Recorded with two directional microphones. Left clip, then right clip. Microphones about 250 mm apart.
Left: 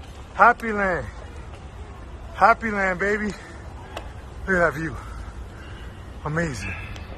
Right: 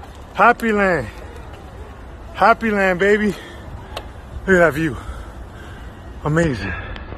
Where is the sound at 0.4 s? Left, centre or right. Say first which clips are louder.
Right 3 dB; right.